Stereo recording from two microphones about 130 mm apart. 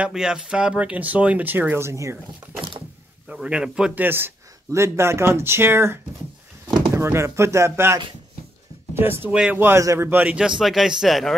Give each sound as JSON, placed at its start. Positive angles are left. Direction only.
{"t": 0.0, "sound": "a man's voice", "side_deg": -5}
{"t": 3.3, "sound": "a man's voice", "side_deg": -10}